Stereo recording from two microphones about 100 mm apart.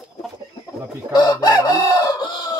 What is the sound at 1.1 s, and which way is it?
Chicken, 45° left (ahead or behind).